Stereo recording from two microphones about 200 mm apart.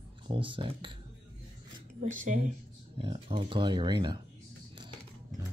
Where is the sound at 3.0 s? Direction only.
25° right (ahead or behind).